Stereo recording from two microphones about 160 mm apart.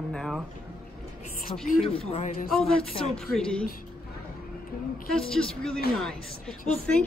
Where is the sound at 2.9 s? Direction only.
40° left (ahead or behind).